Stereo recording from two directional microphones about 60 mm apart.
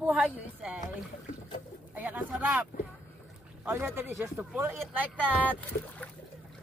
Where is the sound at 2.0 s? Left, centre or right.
Right.